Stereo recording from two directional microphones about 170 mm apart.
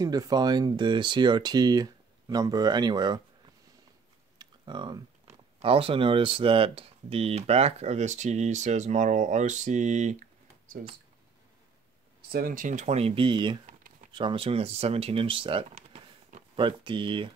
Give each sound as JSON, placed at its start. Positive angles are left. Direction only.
{"t": 0.0, "sound": "speech", "side_deg": -20}
{"t": 4.4, "sound": "speech", "side_deg": -25}
{"t": 12.3, "sound": "speech", "side_deg": -60}
{"t": 13.7, "sound": "a sound", "side_deg": -45}
{"t": 14.1, "sound": "speech", "side_deg": -30}
{"t": 15.7, "sound": "a sound", "side_deg": -45}
{"t": 16.5, "sound": "speech", "side_deg": -30}